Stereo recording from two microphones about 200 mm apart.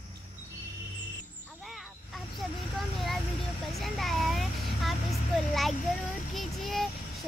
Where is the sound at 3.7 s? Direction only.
Centre (ahead or behind).